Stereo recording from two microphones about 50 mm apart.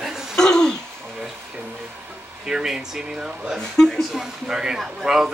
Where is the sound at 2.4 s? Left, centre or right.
Centre.